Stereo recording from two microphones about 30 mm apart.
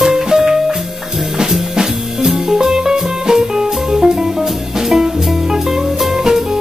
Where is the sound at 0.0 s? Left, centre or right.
Centre.